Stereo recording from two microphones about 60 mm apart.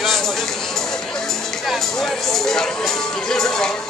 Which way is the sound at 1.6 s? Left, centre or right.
Centre.